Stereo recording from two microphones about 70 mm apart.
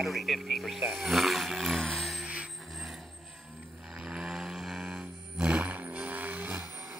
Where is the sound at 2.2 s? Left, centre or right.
Centre.